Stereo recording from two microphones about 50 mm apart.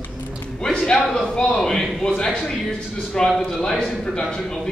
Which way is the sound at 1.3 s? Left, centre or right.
Centre.